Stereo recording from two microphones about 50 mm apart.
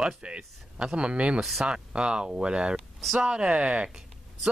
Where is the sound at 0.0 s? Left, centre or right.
Centre.